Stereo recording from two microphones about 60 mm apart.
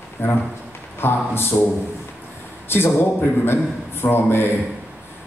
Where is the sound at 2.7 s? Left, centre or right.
Left.